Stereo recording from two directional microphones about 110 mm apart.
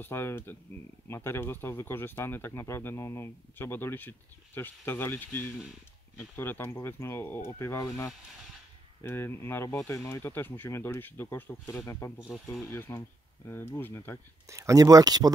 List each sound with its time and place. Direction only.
0.0 s speech: 20° left (ahead or behind)
14.5 s speech: 30° right (ahead or behind)